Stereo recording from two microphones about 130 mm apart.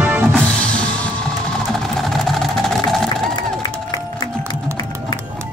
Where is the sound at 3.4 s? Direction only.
30° left (ahead or behind).